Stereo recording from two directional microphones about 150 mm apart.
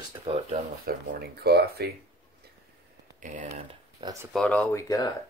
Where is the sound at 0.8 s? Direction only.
90° right.